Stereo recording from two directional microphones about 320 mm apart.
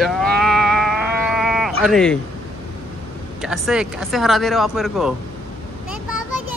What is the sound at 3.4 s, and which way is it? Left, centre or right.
Speech, centre.